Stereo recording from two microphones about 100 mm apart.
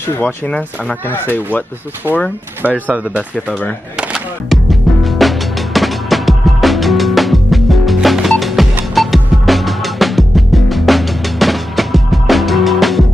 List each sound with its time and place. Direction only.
0.5 s speech: 10° left (ahead or behind)
2.6 s speech: 15° right (ahead or behind)
4.1 s music: centre (ahead or behind)